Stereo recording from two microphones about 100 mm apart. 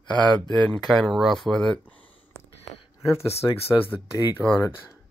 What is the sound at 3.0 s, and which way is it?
Speech, 25° left (ahead or behind).